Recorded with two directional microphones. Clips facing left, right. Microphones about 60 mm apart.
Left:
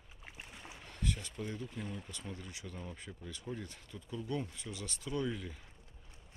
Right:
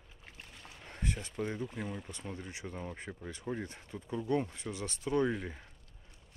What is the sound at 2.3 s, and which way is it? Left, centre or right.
Speech, right.